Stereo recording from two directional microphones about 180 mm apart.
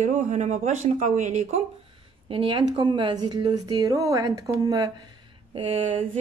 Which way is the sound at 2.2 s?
30° right (ahead or behind).